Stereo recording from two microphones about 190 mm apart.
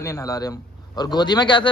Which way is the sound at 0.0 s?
15° left (ahead or behind).